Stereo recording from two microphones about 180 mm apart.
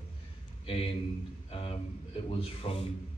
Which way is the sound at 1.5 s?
30° left (ahead or behind).